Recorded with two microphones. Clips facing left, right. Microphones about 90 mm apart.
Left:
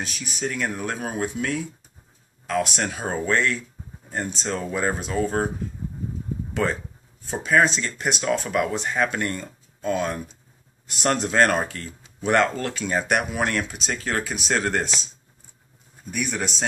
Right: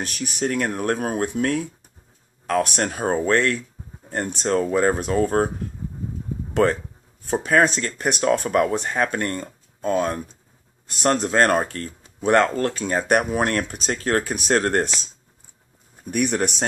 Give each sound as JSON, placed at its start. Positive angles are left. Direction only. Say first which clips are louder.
{"t": 0.0, "sound": "speech", "louder": "right 4 dB", "side_deg": -55}
{"t": 6.5, "sound": "speech", "louder": "right 6 dB", "side_deg": -55}
{"t": 16.1, "sound": "speech", "louder": "right 6 dB", "side_deg": -50}